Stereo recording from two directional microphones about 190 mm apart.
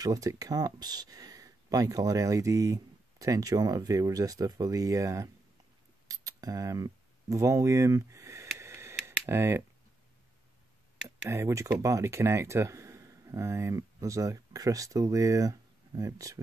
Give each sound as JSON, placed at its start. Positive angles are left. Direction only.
{"t": 0.0, "sound": "speech", "side_deg": -20}
{"t": 6.0, "sound": "a sound", "side_deg": -20}
{"t": 11.1, "sound": "speech", "side_deg": -15}